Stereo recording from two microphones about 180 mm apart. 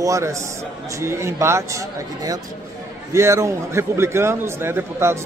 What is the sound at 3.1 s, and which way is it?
A man's voice, 15° right (ahead or behind).